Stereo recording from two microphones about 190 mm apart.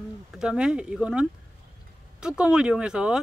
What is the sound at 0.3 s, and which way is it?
Speech, 5° right (ahead or behind).